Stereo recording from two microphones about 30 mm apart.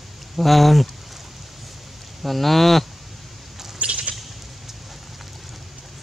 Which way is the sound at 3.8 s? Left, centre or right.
Right.